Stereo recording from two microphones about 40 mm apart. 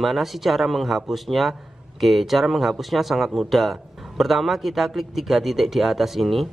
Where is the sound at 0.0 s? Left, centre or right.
Centre.